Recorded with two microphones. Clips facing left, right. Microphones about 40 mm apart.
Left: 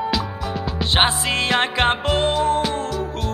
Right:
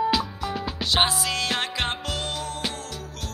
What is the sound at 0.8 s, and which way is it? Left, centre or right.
Music, left.